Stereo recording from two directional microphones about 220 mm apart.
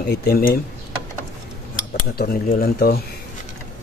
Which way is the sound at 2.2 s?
45° left (ahead or behind).